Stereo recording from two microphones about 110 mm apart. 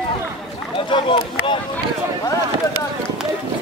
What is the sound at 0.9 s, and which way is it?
Speech, 50° left (ahead or behind).